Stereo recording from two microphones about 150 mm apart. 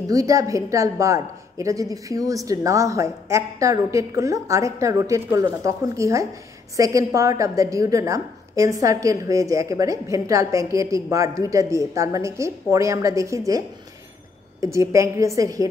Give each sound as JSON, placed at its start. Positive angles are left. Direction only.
{"t": 0.0, "sound": "a woman's voice", "side_deg": -25}
{"t": 14.6, "sound": "a woman's voice", "side_deg": -20}